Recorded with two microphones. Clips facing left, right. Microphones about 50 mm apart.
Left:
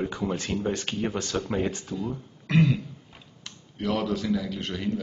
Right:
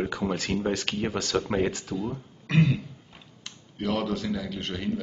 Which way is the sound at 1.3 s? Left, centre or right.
Right.